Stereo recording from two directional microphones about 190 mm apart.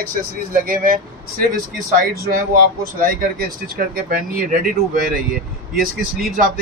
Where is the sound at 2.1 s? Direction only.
55° right (ahead or behind).